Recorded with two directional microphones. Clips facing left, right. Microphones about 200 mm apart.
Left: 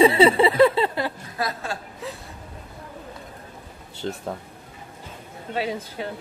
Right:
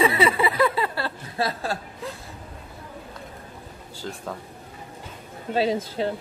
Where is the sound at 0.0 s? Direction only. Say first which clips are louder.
Left 5 dB; 30° left (ahead or behind).